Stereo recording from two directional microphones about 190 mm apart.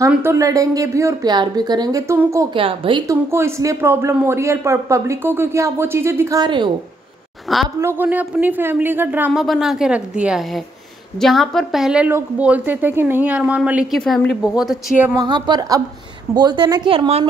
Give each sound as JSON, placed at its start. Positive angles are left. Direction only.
{"t": 0.1, "sound": "speech", "side_deg": -10}
{"t": 2.5, "sound": "a woman's voice", "side_deg": -30}
{"t": 3.1, "sound": "speech", "side_deg": -15}
{"t": 7.5, "sound": "speech", "side_deg": 0}
{"t": 15.1, "sound": "a woman's voice", "side_deg": -20}